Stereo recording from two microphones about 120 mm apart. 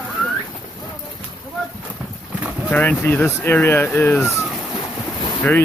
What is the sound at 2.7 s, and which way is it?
Speech, 15° left (ahead or behind).